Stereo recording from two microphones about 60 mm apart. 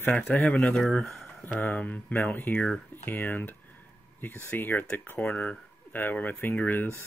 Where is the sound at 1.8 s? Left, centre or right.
Left.